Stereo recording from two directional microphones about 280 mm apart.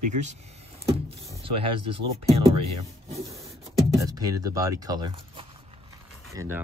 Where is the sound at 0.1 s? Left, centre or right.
Right.